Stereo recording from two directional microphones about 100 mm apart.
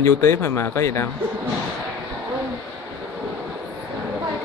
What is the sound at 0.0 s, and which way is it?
Speech, 30° left (ahead or behind).